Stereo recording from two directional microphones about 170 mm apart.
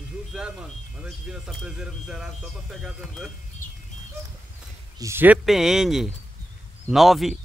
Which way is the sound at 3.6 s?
50° left (ahead or behind).